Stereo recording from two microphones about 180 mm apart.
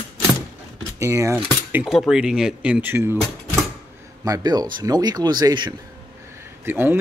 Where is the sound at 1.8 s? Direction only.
Centre (ahead or behind); by 5.7 s 25° right (ahead or behind).